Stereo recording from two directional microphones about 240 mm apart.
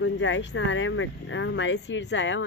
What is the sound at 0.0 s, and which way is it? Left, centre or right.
Speech, left.